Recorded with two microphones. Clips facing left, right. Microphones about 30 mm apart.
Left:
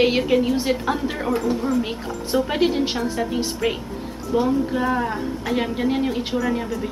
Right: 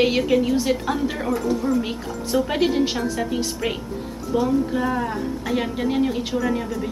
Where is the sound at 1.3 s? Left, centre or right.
Left.